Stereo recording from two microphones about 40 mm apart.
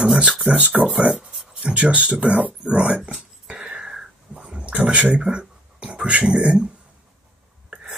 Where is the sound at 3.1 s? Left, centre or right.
Centre.